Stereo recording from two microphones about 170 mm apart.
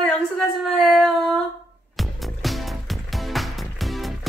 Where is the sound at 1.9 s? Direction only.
Centre (ahead or behind).